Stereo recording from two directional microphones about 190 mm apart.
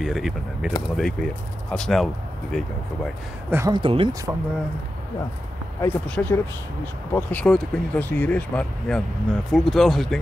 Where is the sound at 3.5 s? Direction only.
15° right (ahead or behind).